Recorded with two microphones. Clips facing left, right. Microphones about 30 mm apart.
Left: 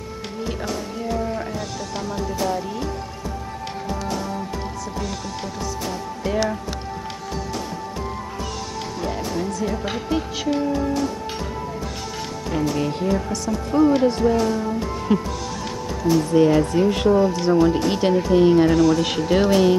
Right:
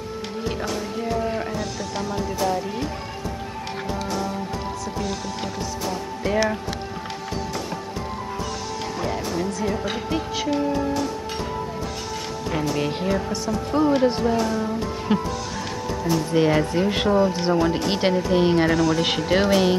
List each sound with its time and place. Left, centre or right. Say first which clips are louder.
0.5 s speech: right 1 dB; centre
3.9 s music: even; centre
6.2 s speech: right 1 dB; centre
9.0 s speech: left 1 dB; centre
12.4 s speech: left 2 dB; centre
13.5 s speech: left 3 dB; centre
15.1 s speech: left 2 dB; right
17.8 s speech: left 2 dB; right
18.7 s speech: left 3 dB; centre
18.9 s speech: left 1 dB; centre